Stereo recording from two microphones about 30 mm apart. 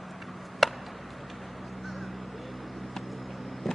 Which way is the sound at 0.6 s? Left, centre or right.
Centre.